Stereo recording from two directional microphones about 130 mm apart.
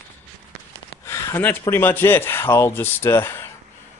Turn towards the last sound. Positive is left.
turn(degrees=20)  # may be behind; listen again after turning